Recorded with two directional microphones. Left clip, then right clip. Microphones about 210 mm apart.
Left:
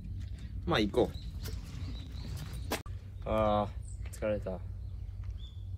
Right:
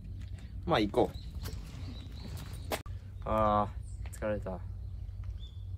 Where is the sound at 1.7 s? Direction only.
20° right (ahead or behind).